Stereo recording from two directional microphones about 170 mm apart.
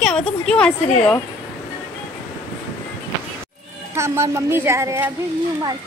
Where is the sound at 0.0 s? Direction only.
5° left (ahead or behind).